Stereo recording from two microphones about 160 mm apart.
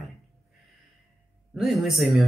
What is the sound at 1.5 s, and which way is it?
Speech, centre (ahead or behind).